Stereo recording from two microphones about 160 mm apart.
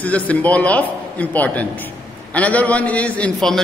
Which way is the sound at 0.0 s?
10° left (ahead or behind).